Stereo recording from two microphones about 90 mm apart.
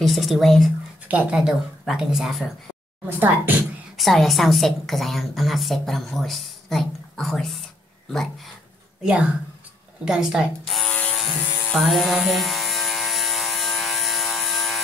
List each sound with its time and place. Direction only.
0.0 s speech: centre (ahead or behind)
1.0 s speech: 15° right (ahead or behind)
3.1 s a woman's voice: 20° right (ahead or behind)
3.9 s a woman's voice: centre (ahead or behind)
10.0 s speech: 10° right (ahead or behind)
10.9 s mains hum: 15° left (ahead or behind)
11.8 s electric shaver: centre (ahead or behind)